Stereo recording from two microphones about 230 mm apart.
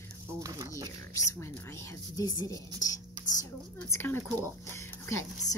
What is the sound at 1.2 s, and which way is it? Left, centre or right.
Speech, centre.